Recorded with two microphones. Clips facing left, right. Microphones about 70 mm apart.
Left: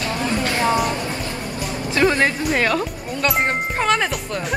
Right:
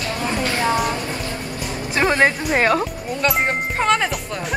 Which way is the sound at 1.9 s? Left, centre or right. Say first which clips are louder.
Right 1 dB; right.